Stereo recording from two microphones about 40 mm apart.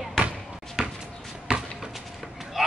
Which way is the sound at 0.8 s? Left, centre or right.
Centre.